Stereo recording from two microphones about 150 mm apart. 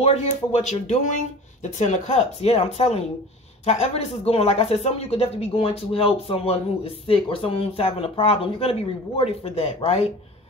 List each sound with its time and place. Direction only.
0.0 s speech: 45° left (ahead or behind)